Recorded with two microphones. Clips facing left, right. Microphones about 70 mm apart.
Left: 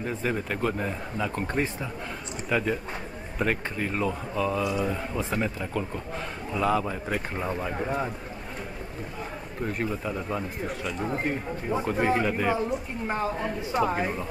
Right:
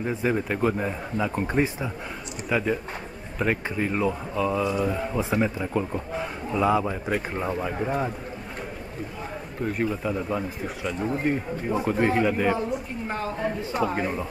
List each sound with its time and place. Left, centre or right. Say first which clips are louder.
0.0 s speech: right 4 dB; centre
9.6 s speech: right 3 dB; centre
13.8 s speech: even; centre